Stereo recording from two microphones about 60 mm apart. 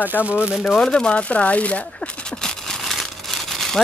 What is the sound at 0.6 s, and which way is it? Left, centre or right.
Speech, centre.